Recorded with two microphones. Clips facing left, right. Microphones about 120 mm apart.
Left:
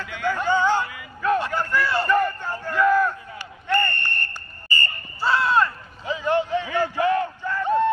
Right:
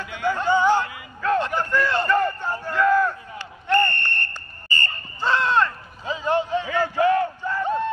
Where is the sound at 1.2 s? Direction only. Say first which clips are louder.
Even; 15° left (ahead or behind).